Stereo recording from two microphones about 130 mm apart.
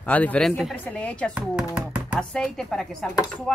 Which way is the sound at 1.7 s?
10° right (ahead or behind).